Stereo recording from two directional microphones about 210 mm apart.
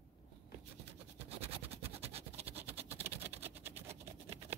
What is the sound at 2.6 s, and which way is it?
Vehicle, 30° right (ahead or behind).